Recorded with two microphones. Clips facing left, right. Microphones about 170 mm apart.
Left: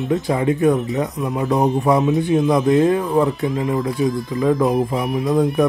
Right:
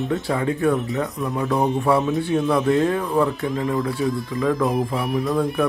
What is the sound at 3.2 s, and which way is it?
Speech, 15° left (ahead or behind).